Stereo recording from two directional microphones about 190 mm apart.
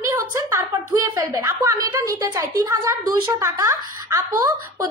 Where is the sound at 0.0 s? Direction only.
15° right (ahead or behind).